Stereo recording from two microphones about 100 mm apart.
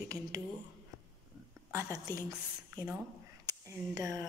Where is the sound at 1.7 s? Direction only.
30° right (ahead or behind).